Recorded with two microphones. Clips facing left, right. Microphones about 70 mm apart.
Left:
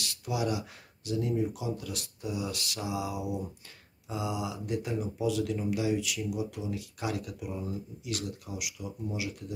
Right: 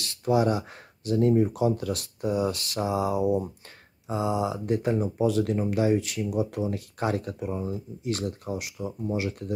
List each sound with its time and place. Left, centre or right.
0.0 s speech: right